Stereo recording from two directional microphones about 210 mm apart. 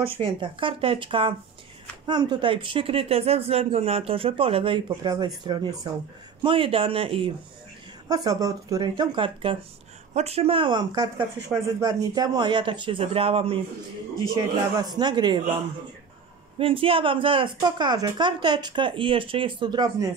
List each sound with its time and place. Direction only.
0.0 s speech: 25° right (ahead or behind)
16.5 s speech: 25° right (ahead or behind)